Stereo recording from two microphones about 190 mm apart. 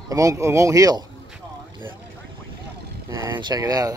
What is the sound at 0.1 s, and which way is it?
Speech, 15° right (ahead or behind).